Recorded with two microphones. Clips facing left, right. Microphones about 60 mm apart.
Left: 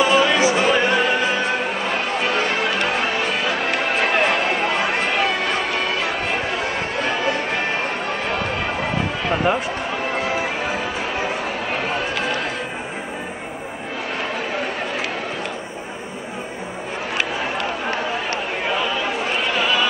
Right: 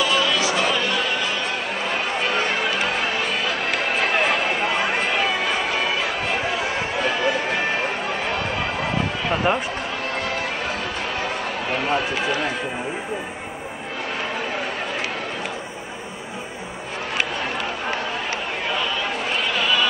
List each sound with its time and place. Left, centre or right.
0.0 s music: left
1.5 s music: centre
10.1 s run: centre
11.1 s chatter: centre
18.7 s chatter: centre